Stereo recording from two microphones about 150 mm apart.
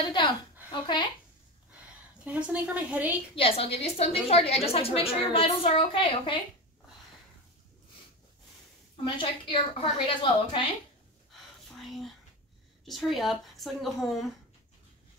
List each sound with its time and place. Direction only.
0.7 s speech: 30° left (ahead or behind)
2.2 s a woman's voice: 10° right (ahead or behind)
3.3 s a woman's voice: 40° left (ahead or behind)
9.0 s a woman's voice: 35° left (ahead or behind)
11.8 s whispering: centre (ahead or behind)
12.8 s a woman's voice: centre (ahead or behind)